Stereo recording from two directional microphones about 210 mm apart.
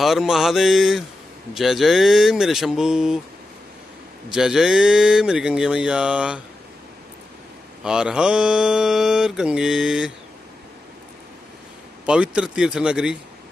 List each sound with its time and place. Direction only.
0.0 s mantra: centre (ahead or behind)
4.3 s mantra: 5° right (ahead or behind)
7.8 s mantra: 5° right (ahead or behind)
12.1 s mantra: 5° right (ahead or behind)